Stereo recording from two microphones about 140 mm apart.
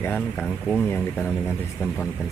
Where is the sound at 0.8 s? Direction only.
15° left (ahead or behind).